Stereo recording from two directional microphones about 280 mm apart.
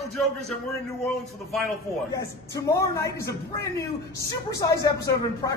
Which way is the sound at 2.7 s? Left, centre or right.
Centre.